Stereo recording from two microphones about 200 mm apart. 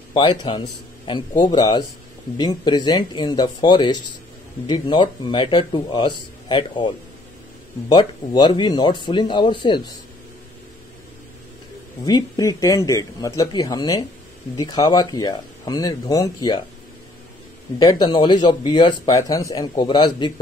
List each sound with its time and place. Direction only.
0.1 s a man's voice: 20° left (ahead or behind)
7.9 s speech: 20° left (ahead or behind)
12.1 s speech: 20° left (ahead or behind)
17.7 s speech: 20° left (ahead or behind)